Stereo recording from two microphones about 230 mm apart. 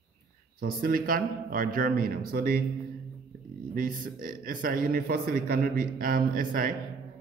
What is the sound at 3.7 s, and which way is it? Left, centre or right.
Speech, right.